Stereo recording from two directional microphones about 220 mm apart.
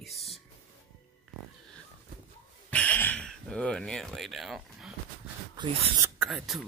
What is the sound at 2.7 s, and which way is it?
Speech, 5° left (ahead or behind).